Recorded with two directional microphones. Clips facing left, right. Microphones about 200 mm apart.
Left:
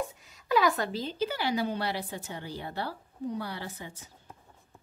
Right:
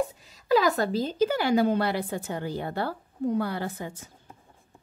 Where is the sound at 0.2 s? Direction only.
35° right (ahead or behind).